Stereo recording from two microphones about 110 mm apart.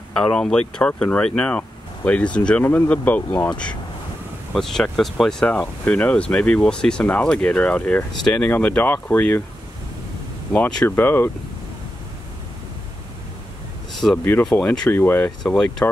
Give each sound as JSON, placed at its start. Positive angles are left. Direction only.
{"t": 0.1, "sound": "speech", "side_deg": 5}
{"t": 10.5, "sound": "speech", "side_deg": 15}
{"t": 14.1, "sound": "speech", "side_deg": 20}
{"t": 15.4, "sound": "speech", "side_deg": 5}